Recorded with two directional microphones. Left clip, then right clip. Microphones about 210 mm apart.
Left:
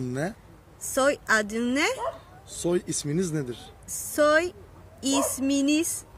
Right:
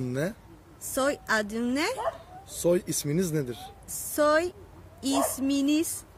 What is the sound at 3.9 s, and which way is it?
A woman's voice, 15° left (ahead or behind).